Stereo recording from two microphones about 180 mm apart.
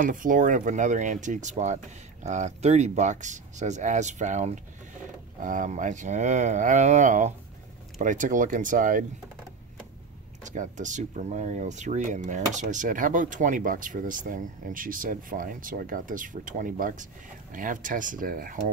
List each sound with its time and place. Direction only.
0.0 s speech: 50° right (ahead or behind)
10.4 s speech: 45° right (ahead or behind)